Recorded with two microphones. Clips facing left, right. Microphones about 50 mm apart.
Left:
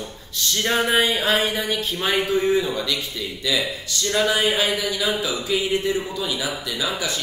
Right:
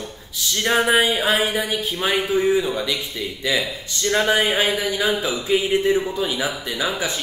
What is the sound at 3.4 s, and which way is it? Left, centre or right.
Speech, right.